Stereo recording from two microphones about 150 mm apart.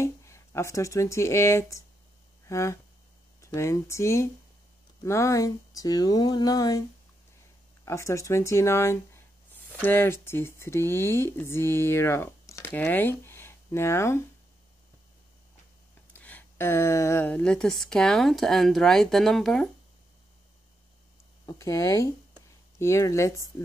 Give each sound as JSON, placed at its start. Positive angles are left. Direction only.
{"t": 0.0, "sound": "speech", "side_deg": 20}
{"t": 7.8, "sound": "speech", "side_deg": 20}
{"t": 16.1, "sound": "a woman's voice", "side_deg": 10}
{"t": 21.5, "sound": "speech", "side_deg": 20}